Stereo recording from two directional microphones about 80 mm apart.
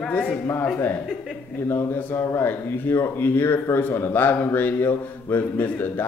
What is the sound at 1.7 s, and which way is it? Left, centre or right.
A man's voice, left.